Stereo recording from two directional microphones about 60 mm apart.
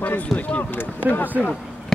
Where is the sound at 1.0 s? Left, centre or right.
Right.